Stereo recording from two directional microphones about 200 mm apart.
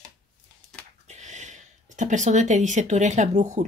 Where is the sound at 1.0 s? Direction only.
35° right (ahead or behind).